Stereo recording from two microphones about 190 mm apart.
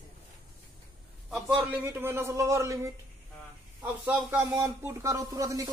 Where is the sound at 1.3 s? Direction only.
5° right (ahead or behind).